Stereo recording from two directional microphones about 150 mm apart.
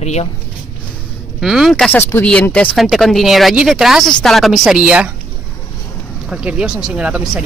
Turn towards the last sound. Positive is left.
turn(degrees=-5)  # may be behind; listen again after turning